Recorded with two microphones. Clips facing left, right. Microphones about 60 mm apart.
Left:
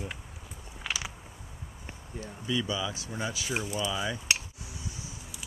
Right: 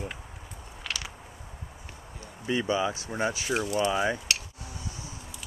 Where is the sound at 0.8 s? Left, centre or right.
Centre.